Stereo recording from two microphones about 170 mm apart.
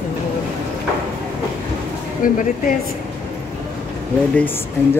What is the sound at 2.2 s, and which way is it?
Speech, 55° left (ahead or behind).